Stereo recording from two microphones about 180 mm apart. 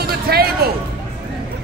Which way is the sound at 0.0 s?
60° right (ahead or behind).